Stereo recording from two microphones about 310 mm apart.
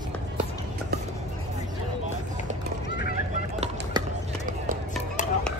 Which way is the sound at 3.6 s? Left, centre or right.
Right.